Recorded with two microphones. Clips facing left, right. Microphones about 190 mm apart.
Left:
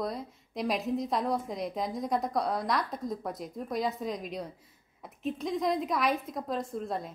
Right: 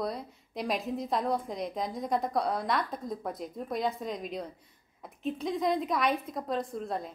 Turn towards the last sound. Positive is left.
turn(degrees=0)  # may be behind; listen again after turning